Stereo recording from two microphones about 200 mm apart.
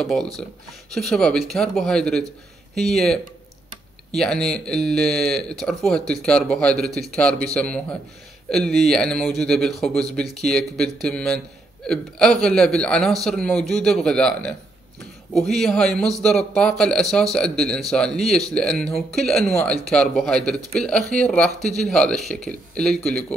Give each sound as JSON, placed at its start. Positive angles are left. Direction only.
{"t": 0.0, "sound": "a man's voice", "side_deg": 0}